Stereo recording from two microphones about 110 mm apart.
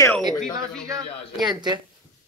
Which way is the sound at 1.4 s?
40° right (ahead or behind).